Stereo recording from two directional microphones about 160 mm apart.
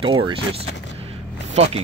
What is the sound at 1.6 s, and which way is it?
Speech, 40° right (ahead or behind).